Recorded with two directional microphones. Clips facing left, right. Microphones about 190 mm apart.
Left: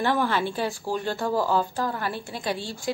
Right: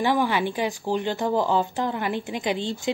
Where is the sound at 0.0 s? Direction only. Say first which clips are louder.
Right 2 dB; 15° right (ahead or behind).